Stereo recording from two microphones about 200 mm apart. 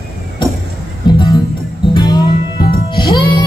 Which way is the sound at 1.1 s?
20° left (ahead or behind).